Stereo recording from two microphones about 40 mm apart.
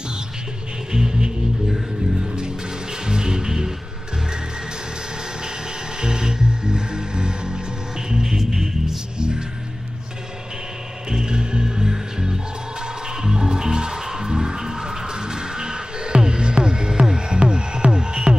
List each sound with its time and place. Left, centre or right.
0.9 s music: centre
5.9 s music: centre
11.1 s music: centre